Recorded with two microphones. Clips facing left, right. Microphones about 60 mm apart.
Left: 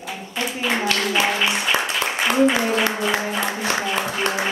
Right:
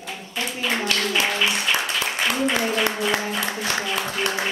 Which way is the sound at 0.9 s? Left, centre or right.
Centre.